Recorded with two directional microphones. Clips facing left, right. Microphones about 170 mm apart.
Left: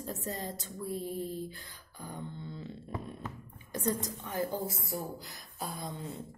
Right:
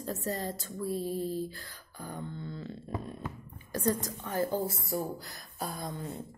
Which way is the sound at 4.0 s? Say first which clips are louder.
Right 2 dB; 15° left (ahead or behind).